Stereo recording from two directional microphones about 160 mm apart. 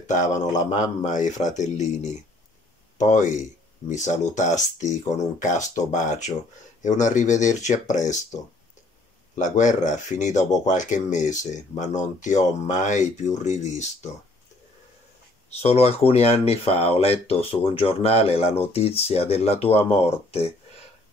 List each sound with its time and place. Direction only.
0.0 s speech: 50° left (ahead or behind)
9.3 s speech: 50° left (ahead or behind)
15.5 s speech: 40° left (ahead or behind)